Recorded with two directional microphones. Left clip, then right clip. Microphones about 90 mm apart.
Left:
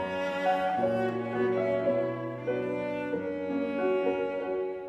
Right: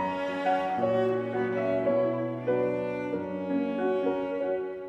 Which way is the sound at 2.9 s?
40° left (ahead or behind).